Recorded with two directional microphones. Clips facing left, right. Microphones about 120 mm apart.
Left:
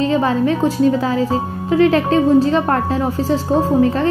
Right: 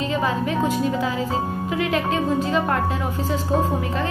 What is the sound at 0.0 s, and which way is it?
A woman's voice, 35° left (ahead or behind).